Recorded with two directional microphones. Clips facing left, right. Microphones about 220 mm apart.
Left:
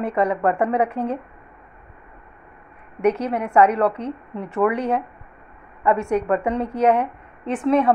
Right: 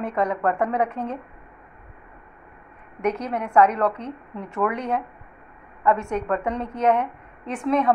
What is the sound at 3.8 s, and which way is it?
Speech, 30° left (ahead or behind).